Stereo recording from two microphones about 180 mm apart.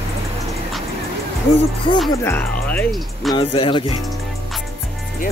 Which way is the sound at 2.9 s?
Centre (ahead or behind).